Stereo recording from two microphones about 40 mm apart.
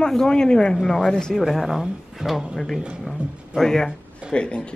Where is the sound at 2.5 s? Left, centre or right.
Centre.